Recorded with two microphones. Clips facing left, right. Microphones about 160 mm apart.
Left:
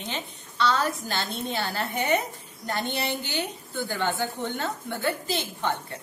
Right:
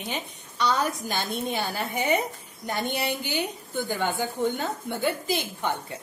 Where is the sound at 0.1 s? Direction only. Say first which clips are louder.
Right 1 dB; 15° right (ahead or behind).